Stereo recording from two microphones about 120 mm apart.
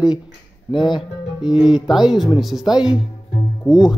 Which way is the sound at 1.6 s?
5° right (ahead or behind).